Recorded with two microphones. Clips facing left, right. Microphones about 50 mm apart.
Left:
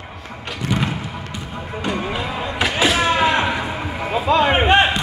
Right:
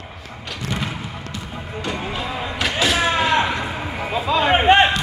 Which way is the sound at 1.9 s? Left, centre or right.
Centre.